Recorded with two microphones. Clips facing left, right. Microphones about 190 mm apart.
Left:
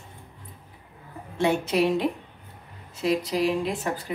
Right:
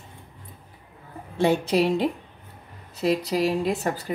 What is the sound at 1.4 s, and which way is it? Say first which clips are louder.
Speech: right 2 dB; 35° right (ahead or behind).